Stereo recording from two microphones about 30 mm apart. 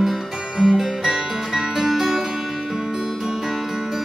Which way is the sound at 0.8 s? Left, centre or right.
Centre.